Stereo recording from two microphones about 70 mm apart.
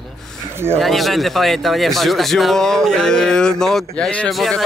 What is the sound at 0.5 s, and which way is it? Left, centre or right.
Speech, right.